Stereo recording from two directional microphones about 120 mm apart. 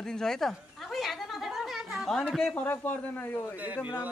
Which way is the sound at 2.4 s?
15° left (ahead or behind).